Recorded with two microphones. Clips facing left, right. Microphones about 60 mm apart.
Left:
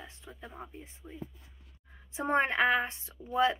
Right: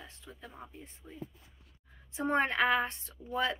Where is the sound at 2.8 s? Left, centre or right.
Centre.